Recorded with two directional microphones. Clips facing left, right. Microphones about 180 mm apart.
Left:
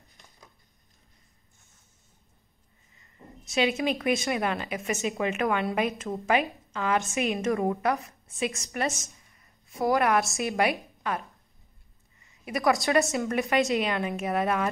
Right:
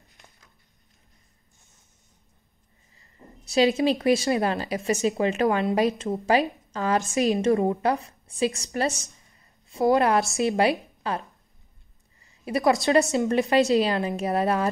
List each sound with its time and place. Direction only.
3.0 s a woman's voice: 35° right (ahead or behind)
12.4 s a woman's voice: 30° right (ahead or behind)